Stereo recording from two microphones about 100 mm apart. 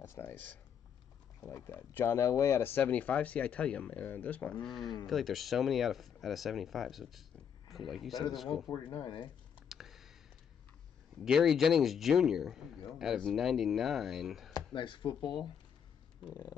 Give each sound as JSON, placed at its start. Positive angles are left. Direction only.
{"t": 0.0, "sound": "speech", "side_deg": 25}
{"t": 4.6, "sound": "speech", "side_deg": 0}
{"t": 9.0, "sound": "speech", "side_deg": 55}
{"t": 9.7, "sound": "a sound", "side_deg": -5}
{"t": 11.2, "sound": "speech", "side_deg": -5}
{"t": 14.5, "sound": "speech", "side_deg": 55}